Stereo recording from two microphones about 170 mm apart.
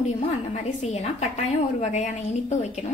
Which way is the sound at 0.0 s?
40° left (ahead or behind).